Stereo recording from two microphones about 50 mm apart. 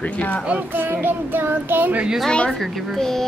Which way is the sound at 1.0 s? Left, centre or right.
Right.